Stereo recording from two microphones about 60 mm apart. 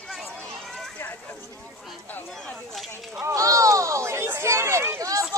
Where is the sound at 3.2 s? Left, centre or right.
Right.